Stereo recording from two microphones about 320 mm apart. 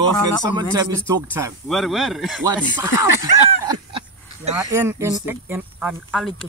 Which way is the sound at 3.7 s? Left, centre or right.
Centre.